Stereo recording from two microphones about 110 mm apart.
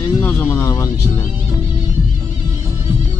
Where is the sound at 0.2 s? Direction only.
20° left (ahead or behind).